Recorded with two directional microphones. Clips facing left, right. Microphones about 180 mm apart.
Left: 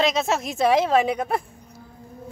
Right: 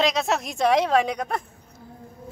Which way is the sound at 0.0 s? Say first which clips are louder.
Left 1 dB; centre (ahead or behind).